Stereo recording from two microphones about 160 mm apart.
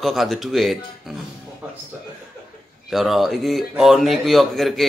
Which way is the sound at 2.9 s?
Centre (ahead or behind).